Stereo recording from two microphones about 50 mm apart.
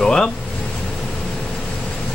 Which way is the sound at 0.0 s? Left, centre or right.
Centre.